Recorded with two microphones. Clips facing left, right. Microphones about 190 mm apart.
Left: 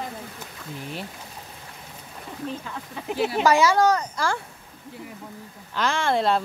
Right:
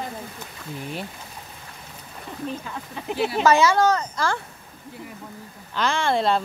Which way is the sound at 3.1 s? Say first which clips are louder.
Even; 45° left (ahead or behind).